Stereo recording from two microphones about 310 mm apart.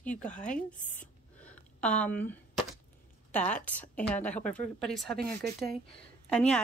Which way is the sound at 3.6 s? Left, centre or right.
Centre.